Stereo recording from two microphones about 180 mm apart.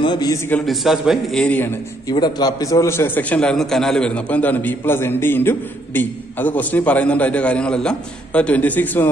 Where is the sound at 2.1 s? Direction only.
25° left (ahead or behind).